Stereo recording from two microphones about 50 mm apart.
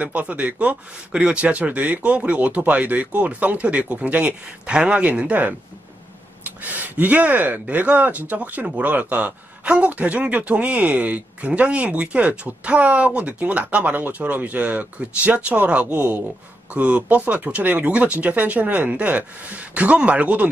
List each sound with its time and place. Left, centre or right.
0.0 s speech: right